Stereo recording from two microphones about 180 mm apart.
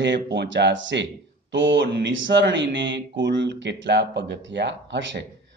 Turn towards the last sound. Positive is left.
turn(degrees=-85)